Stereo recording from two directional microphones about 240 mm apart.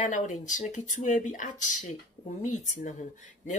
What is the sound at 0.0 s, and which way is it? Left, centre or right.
Speech, left.